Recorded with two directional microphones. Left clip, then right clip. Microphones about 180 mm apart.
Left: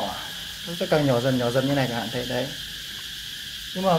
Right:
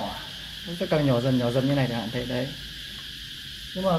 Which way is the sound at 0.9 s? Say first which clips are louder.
Left 2 dB; 10° left (ahead or behind).